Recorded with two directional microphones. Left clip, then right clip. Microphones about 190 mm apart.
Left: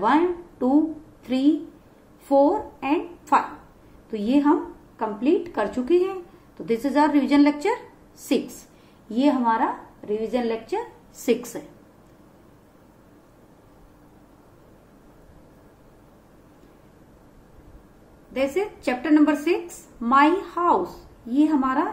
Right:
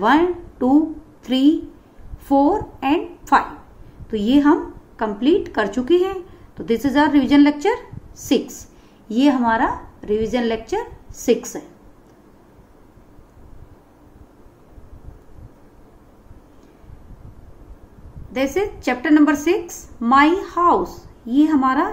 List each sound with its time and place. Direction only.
0.0 s a woman's voice: 20° right (ahead or behind)
11.1 s a woman's voice: 15° right (ahead or behind)
18.3 s a woman's voice: 20° right (ahead or behind)